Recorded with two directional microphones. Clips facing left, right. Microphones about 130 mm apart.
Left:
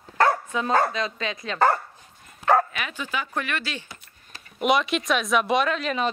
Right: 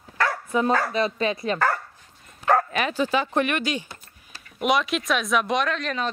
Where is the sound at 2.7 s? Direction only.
35° right (ahead or behind).